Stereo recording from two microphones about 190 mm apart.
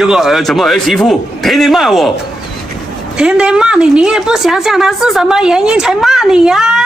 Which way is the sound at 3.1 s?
5° right (ahead or behind).